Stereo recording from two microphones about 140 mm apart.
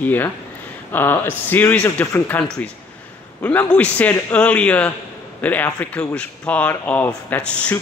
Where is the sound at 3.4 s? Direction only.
10° left (ahead or behind).